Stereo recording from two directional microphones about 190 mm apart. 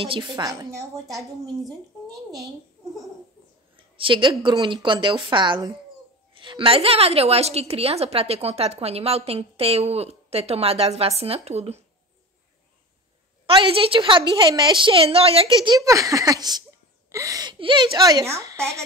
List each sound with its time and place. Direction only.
0.0 s a woman's voice: 25° right (ahead or behind)
3.7 s a woman's voice: 25° right (ahead or behind)
13.5 s a woman's voice: 30° right (ahead or behind)